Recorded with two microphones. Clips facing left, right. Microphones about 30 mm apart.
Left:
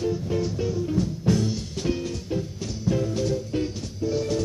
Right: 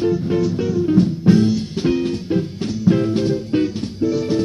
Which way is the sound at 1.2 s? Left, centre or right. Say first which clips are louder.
Right 9 dB; right.